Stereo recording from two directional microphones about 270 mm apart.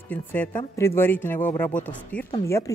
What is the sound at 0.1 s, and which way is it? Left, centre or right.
Speech, centre.